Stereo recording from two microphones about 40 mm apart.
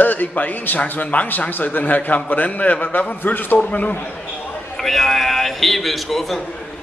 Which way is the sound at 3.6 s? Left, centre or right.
Left.